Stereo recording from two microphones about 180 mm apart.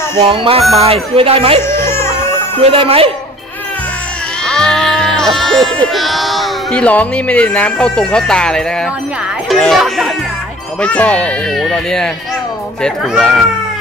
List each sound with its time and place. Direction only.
0.2 s music: 30° right (ahead or behind)
0.7 s speech: 35° right (ahead or behind)
1.6 s music: 15° left (ahead or behind)
2.6 s speech: 30° right (ahead or behind)
4.5 s music: 5° left (ahead or behind)
5.9 s speech: centre (ahead or behind)